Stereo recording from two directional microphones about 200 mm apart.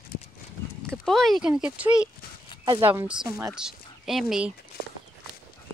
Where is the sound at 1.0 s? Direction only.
Centre (ahead or behind); by 3.5 s 15° right (ahead or behind).